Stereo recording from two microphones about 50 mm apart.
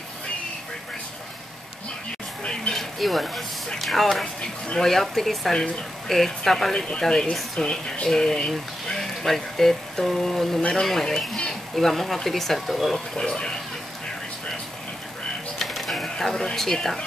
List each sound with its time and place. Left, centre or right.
2.7 s speech: centre
13.1 s speech: centre
15.6 s mechanisms: centre